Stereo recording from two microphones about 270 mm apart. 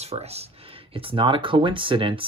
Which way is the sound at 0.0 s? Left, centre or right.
Right.